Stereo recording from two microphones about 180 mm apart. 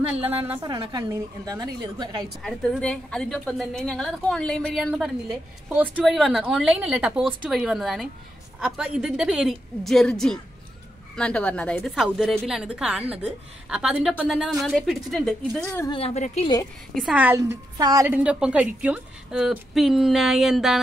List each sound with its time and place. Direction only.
0.3 s a woman's voice: 10° right (ahead or behind)
0.6 s a woman's voice: 25° right (ahead or behind)
2.4 s a woman's voice: centre (ahead or behind)
15.9 s a woman's voice: 35° left (ahead or behind)
17.0 s a woman's voice: 10° right (ahead or behind)
18.1 s a woman's voice: 5° right (ahead or behind)